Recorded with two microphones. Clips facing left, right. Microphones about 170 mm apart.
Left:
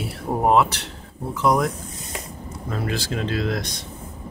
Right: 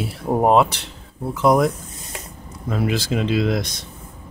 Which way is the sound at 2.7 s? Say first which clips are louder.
Right 5 dB; 15° right (ahead or behind).